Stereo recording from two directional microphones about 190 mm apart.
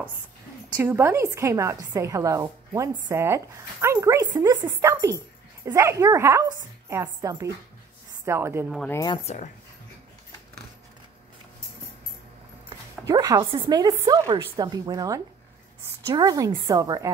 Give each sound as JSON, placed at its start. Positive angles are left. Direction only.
{"t": 0.7, "sound": "a woman's voice", "side_deg": -10}
{"t": 8.7, "sound": "speech", "side_deg": 10}
{"t": 9.2, "sound": "speech", "side_deg": 35}
{"t": 12.6, "sound": "speech", "side_deg": -20}